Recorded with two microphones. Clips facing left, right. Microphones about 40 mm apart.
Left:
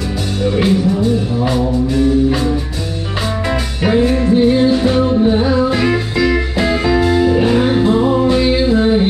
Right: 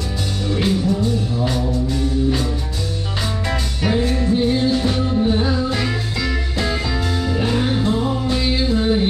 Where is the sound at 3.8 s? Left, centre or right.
Left.